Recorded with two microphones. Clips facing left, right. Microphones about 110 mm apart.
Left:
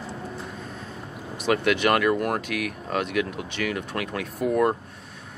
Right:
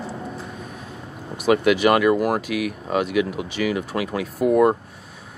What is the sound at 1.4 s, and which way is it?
Speech, 5° right (ahead or behind).